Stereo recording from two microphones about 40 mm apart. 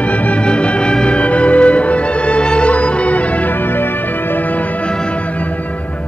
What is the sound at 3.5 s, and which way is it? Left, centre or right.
Music, left.